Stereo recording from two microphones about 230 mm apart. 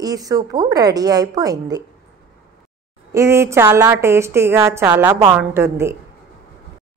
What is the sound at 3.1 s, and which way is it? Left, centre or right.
A woman's voice, centre.